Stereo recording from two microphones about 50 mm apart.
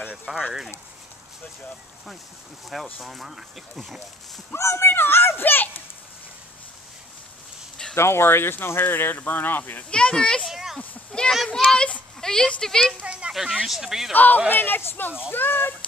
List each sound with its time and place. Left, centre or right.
0.0 s a sound: right
0.3 s speech: centre
2.7 s speech: centre
4.6 s speech: left
4.9 s speech: left
7.9 s speech: left
9.8 s speech: centre
10.5 s speech: centre
11.1 s a sound: centre
11.3 s speech: centre
11.7 s speech: centre
13.0 s a sound: right
13.3 s speech: centre
14.1 s speech: left